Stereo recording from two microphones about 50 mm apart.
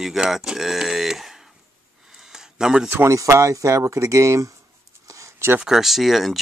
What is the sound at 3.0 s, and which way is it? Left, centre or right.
Speech, right.